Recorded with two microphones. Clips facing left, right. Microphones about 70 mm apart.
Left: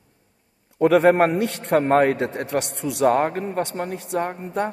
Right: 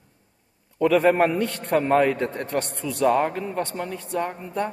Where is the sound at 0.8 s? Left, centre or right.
Left.